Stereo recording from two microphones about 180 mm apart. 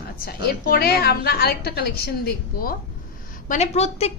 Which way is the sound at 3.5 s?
35° left (ahead or behind).